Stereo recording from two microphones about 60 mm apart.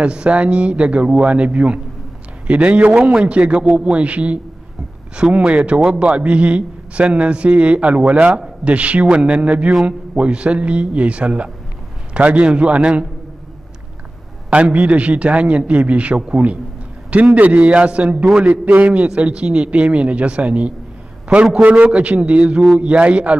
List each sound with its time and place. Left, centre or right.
0.0 s a man's voice: centre
14.5 s a man's voice: right